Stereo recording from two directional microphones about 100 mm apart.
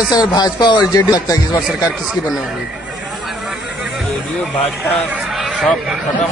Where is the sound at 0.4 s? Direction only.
45° left (ahead or behind).